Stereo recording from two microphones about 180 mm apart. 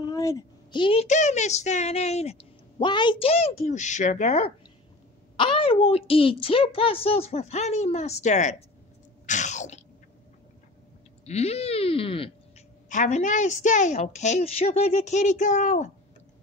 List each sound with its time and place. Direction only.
0.1 s a sound: 20° left (ahead or behind)
1.0 s a woman's voice: 40° left (ahead or behind)
9.2 s chewing: 40° left (ahead or behind)
11.2 s a woman's voice: 35° left (ahead or behind)
12.9 s a woman's voice: 45° left (ahead or behind)